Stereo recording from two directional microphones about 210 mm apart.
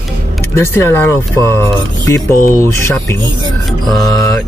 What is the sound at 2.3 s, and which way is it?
Speech, 40° left (ahead or behind).